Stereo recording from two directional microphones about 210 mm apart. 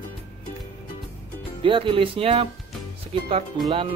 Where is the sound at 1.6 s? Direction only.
25° right (ahead or behind).